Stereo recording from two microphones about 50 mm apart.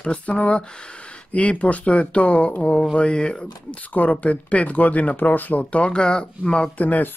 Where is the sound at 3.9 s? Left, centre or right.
Left.